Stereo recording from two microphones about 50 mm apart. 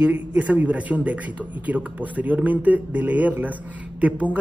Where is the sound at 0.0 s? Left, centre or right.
Right.